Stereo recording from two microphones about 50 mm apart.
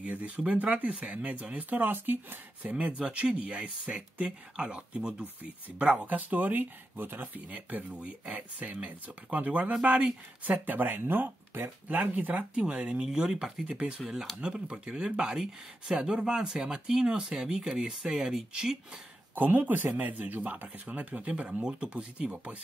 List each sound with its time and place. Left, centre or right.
0.0 s speech: right
2.0 s speech: right
2.7 s speech: right
12.0 s speech: right; by 18.9 s centre
19.3 s speech: right